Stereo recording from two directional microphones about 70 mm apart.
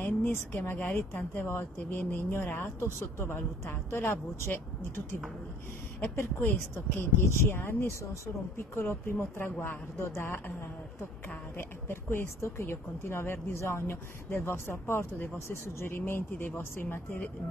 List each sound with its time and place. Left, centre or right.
0.0 s a woman's voice: left
7.0 s speech: left